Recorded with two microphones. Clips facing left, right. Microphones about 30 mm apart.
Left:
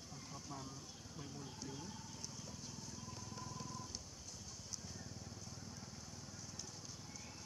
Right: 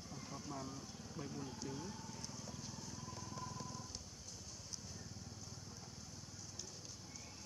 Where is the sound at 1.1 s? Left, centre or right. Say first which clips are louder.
Right 5 dB; centre.